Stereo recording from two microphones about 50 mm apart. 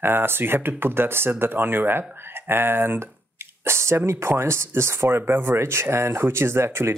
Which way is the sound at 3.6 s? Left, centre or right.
Right.